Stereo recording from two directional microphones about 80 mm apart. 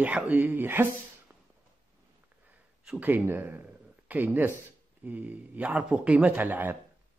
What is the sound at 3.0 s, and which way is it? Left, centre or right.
Speech, right.